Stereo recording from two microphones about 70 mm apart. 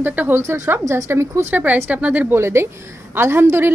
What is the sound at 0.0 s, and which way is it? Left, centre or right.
A woman's voice, right.